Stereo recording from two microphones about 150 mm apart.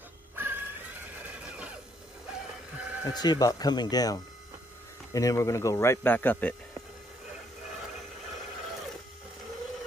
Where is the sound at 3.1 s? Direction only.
25° left (ahead or behind).